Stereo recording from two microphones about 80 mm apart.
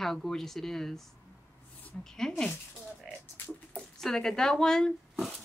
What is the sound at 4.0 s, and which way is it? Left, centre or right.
Speech, centre.